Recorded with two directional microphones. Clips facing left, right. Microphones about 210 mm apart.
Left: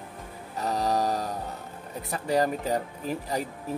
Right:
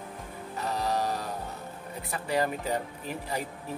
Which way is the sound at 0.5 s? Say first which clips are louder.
Left 3 dB; 40° left (ahead or behind).